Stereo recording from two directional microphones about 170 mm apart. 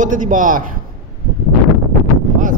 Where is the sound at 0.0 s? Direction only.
50° right (ahead or behind).